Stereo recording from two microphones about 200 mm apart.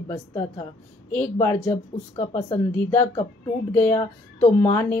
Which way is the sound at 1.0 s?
10° left (ahead or behind).